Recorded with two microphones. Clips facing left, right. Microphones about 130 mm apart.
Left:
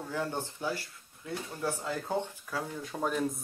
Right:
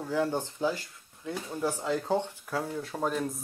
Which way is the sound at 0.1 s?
15° right (ahead or behind).